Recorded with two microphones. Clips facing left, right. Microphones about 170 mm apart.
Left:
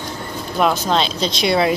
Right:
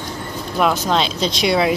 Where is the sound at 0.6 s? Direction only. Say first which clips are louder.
Even; centre (ahead or behind).